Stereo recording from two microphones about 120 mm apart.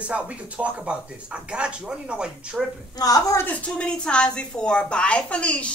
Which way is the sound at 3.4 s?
10° left (ahead or behind).